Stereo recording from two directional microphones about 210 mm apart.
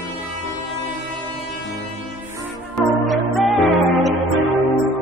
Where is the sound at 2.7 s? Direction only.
Centre (ahead or behind).